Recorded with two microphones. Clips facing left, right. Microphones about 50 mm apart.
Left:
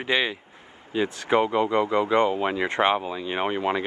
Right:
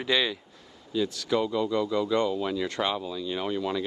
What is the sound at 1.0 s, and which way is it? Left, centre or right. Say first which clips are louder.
Speech: left 4 dB; left.